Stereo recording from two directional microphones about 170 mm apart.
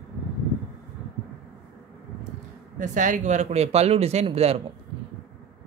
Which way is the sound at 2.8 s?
50° right (ahead or behind).